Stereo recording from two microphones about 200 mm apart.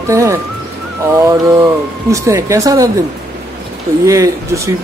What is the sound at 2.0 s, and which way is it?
Speech, 15° right (ahead or behind).